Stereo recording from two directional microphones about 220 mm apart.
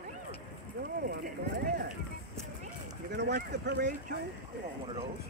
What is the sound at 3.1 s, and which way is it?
Speech, 50° right (ahead or behind).